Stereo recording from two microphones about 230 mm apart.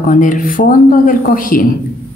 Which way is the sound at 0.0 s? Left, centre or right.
Left.